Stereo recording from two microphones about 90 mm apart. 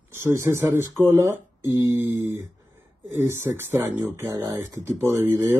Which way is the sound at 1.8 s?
40° right (ahead or behind).